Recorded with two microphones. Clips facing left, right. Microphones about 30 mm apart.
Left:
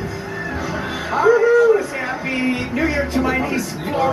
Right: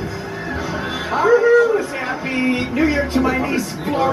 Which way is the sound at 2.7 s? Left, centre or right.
Centre.